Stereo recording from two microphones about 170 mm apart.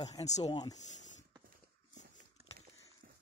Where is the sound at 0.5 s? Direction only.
25° left (ahead or behind).